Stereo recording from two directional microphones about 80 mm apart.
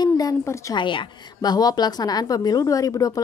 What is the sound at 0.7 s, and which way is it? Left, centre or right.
Speech, left.